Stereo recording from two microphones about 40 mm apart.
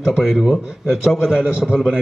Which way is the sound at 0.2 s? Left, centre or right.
Centre.